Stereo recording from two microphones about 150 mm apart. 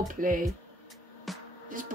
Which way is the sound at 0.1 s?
65° right (ahead or behind).